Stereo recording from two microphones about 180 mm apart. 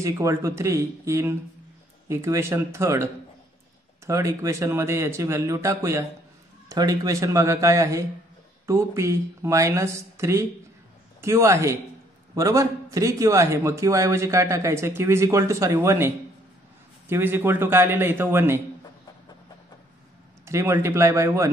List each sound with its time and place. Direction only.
0.0 s a man's voice: 15° right (ahead or behind)
17.1 s a man's voice: 15° right (ahead or behind)
20.4 s a man's voice: 15° right (ahead or behind)